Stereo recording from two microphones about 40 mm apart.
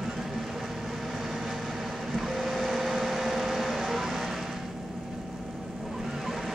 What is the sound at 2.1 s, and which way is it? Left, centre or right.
Vehicle, centre.